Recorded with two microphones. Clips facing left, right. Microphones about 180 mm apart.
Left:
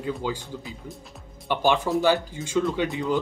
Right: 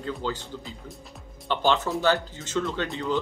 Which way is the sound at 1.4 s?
10° left (ahead or behind).